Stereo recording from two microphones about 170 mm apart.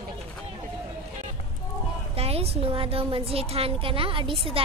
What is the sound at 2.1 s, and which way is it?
A woman's voice, 35° right (ahead or behind).